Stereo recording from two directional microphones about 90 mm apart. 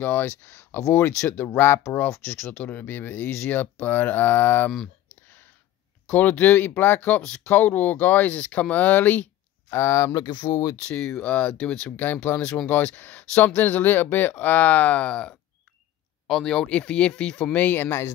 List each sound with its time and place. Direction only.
0.0 s speech: 25° left (ahead or behind)
6.0 s speech: 15° left (ahead or behind); by 10.2 s 35° left (ahead or behind)
10.2 s speech: 50° left (ahead or behind)
10.8 s speech: 10° left (ahead or behind)